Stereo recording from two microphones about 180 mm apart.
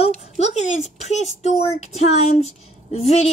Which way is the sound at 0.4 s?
40° left (ahead or behind).